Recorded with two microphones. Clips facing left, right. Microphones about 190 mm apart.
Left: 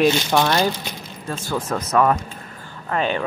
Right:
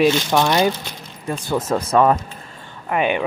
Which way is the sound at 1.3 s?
20° right (ahead or behind).